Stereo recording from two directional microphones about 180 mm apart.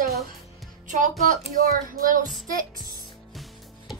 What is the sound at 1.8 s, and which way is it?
Child singing, 50° right (ahead or behind).